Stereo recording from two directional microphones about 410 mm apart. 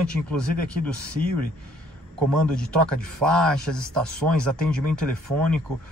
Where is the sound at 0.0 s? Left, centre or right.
Centre.